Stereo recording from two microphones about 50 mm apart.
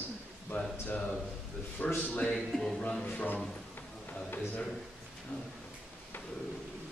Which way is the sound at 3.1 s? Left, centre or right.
Left.